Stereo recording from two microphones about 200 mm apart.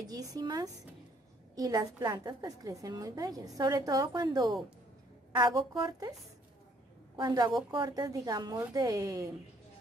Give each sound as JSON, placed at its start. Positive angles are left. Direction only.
{"t": 0.0, "sound": "a woman's voice", "side_deg": -20}
{"t": 7.2, "sound": "a woman's voice", "side_deg": -20}